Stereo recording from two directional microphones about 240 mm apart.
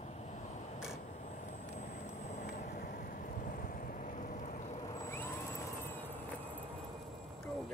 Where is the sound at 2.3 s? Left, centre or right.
Left.